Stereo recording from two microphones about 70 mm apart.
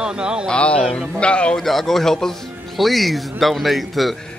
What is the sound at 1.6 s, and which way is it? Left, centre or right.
A man's voice, centre.